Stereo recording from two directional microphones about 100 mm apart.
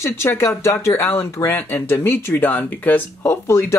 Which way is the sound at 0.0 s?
25° left (ahead or behind).